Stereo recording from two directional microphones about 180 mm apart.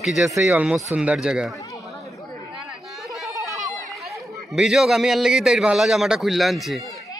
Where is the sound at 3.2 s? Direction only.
15° right (ahead or behind).